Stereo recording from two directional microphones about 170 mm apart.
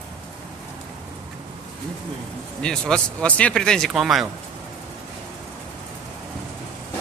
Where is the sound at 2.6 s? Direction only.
5° left (ahead or behind).